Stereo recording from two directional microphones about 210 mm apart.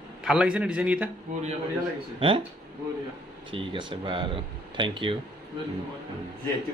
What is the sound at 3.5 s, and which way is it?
Speech, 25° right (ahead or behind).